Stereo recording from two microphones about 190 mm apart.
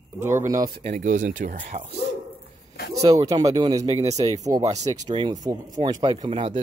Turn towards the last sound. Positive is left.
turn(degrees=-25)  # may be behind; listen again after turning